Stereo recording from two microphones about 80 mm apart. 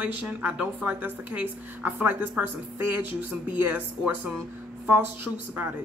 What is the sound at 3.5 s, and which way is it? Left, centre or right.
Speech, centre.